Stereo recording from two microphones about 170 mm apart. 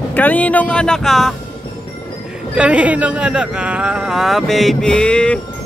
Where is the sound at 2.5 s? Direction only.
5° right (ahead or behind).